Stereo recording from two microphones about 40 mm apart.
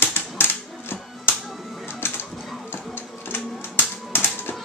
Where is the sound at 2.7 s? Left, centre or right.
Left.